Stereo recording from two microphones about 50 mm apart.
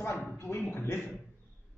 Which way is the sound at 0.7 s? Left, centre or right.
Left.